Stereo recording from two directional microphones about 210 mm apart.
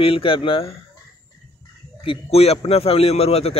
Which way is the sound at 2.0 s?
25° left (ahead or behind).